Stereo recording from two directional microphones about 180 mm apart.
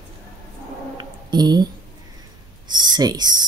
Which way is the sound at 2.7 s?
25° right (ahead or behind).